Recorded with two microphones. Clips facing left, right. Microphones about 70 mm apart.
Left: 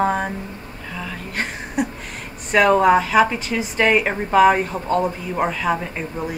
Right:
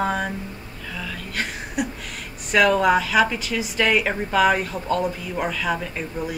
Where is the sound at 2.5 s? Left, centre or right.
Left.